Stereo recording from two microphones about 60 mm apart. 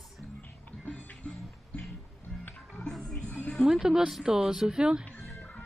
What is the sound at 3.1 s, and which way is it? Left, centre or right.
Music, left.